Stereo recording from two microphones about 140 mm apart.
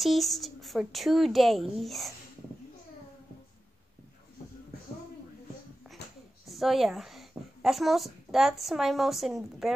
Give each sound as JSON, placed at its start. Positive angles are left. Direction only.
{"t": 0.0, "sound": "a woman's voice", "side_deg": 0}
{"t": 5.9, "sound": "a sound", "side_deg": -5}
{"t": 6.4, "sound": "a woman's voice", "side_deg": 0}